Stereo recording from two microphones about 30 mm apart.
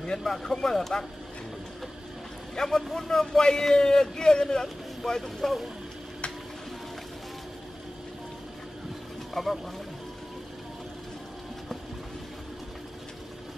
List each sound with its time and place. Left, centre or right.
0.4 s speech: centre
2.5 s a man's voice: centre
9.3 s speech: centre